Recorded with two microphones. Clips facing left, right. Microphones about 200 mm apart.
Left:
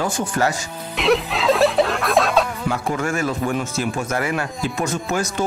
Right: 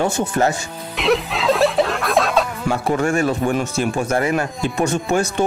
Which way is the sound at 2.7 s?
30° right (ahead or behind).